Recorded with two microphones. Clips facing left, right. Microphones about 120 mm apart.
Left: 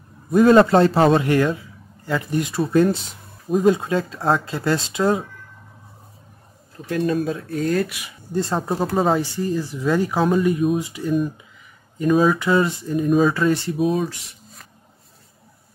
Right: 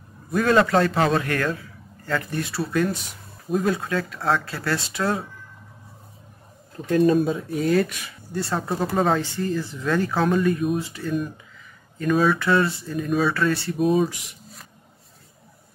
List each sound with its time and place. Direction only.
0.3 s a man's voice: 25° left (ahead or behind)
2.7 s a man's voice: 30° left (ahead or behind)
7.2 s speech: 10° right (ahead or behind)
7.9 s speech: 15° left (ahead or behind)
8.5 s speech: 5° left (ahead or behind)
12.1 s speech: 5° left (ahead or behind)
12.4 s speech: 15° left (ahead or behind)
13.0 s speech: centre (ahead or behind)
13.3 s speech: 15° left (ahead or behind)
13.7 s speech: centre (ahead or behind)